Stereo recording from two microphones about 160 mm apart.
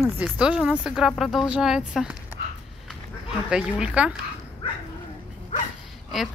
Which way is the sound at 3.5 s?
5° right (ahead or behind).